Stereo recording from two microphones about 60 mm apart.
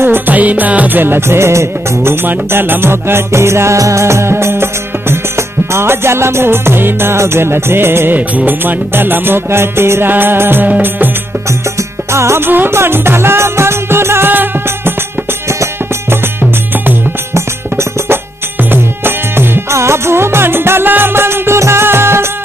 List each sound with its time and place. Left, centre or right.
0.3 s music: right
2.2 s music: right
12.1 s music: right
12.4 s music: right
17.3 s music: right
19.7 s music: right